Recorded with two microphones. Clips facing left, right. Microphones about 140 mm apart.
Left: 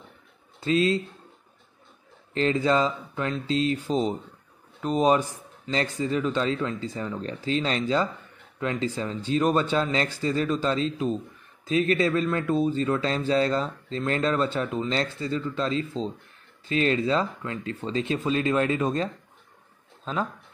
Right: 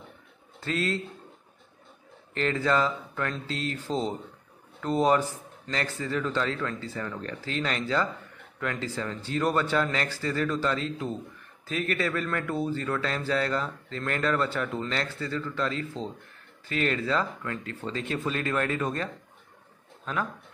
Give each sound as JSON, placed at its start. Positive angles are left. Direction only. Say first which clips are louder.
{"t": 0.6, "sound": "a man's voice", "louder": "left 7 dB", "side_deg": 20}
{"t": 2.3, "sound": "speech", "louder": "left 3 dB", "side_deg": 20}